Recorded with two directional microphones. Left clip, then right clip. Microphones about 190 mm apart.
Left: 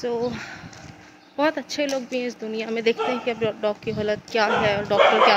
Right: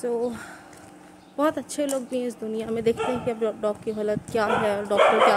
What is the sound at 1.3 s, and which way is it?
Speech, 15° right (ahead or behind).